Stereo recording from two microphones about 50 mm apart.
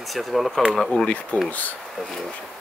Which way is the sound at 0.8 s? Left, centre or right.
Left.